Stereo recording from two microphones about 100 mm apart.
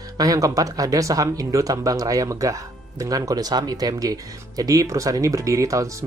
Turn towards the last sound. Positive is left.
turn(degrees=-35)  # may be behind; listen again after turning